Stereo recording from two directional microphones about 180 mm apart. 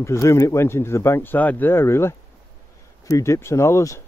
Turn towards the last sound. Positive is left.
turn(degrees=15)  # may be behind; listen again after turning